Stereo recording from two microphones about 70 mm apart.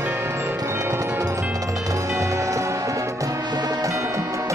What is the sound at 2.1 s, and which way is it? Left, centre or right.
Music, right.